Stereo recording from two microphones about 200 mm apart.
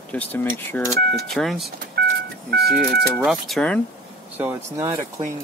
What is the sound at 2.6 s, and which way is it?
Speech, 50° right (ahead or behind).